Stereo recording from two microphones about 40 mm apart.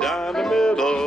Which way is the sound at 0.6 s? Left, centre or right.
Centre.